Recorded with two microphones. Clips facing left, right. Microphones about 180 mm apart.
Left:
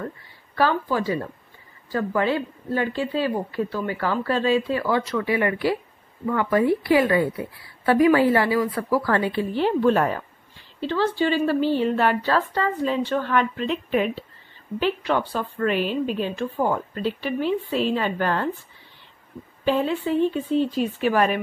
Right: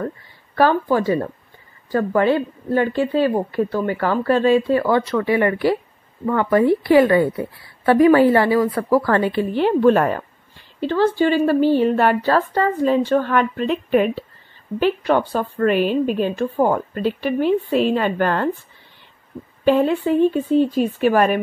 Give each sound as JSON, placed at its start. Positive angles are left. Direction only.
{"t": 0.6, "sound": "a woman's voice", "side_deg": -50}
{"t": 19.6, "sound": "a woman's voice", "side_deg": -55}